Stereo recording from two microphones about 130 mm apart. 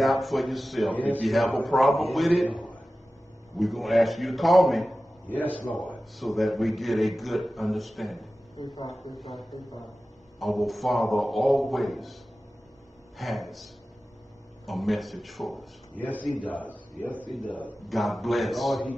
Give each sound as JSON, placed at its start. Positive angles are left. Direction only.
{"t": 0.0, "sound": "a man's voice", "side_deg": 0}
{"t": 5.3, "sound": "a man's voice", "side_deg": 10}
{"t": 6.1, "sound": "a man's voice", "side_deg": 0}
{"t": 8.5, "sound": "speech", "side_deg": 30}
{"t": 10.4, "sound": "a man's voice", "side_deg": 0}
{"t": 13.2, "sound": "a man's voice", "side_deg": 0}
{"t": 14.7, "sound": "a man's voice", "side_deg": 0}
{"t": 16.0, "sound": "a man's voice", "side_deg": 10}
{"t": 17.8, "sound": "a man's voice", "side_deg": 0}